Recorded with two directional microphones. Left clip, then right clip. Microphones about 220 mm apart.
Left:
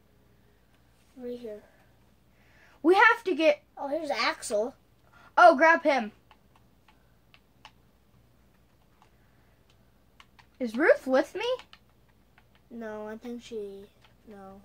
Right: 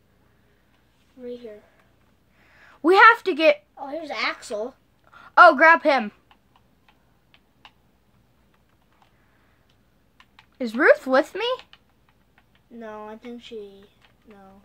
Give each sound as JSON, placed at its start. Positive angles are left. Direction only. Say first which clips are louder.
{"t": 1.2, "sound": "speech", "louder": "right 2 dB", "side_deg": 15}
{"t": 2.5, "sound": "a sound", "louder": "right 5 dB", "side_deg": -45}
{"t": 3.8, "sound": "speech", "louder": "left 3 dB", "side_deg": 15}
{"t": 5.1, "sound": "a woman's voice", "louder": "right 5 dB", "side_deg": -45}
{"t": 10.3, "sound": "speech", "louder": "right 5 dB", "side_deg": -45}
{"t": 12.7, "sound": "speech", "louder": "right 1 dB", "side_deg": 15}